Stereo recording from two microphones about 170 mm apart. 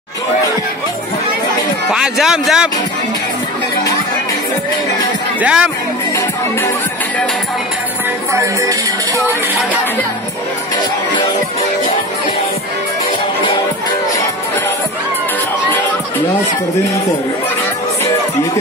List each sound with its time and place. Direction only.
1.9 s a man's voice: centre (ahead or behind)
5.4 s music: 5° right (ahead or behind)
8.3 s music: 15° right (ahead or behind)